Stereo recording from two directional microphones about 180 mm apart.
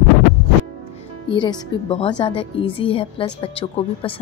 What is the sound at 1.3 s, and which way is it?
Speech, 25° left (ahead or behind).